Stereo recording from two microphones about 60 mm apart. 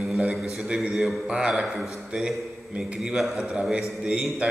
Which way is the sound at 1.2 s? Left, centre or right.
Centre.